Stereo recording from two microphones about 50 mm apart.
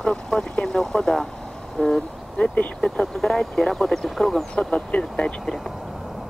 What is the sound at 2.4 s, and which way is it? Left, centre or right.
Speech, left.